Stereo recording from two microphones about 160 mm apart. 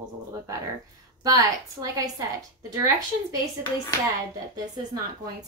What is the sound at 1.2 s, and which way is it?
A woman's voice, 25° right (ahead or behind).